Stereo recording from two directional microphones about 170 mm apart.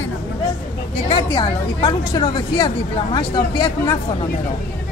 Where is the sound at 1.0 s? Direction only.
30° left (ahead or behind).